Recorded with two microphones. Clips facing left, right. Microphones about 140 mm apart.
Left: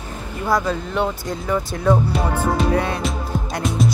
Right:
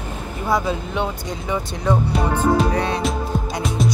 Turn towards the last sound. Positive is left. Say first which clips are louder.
# left 1 dB
turn(degrees=0)  # may be behind; listen again after turning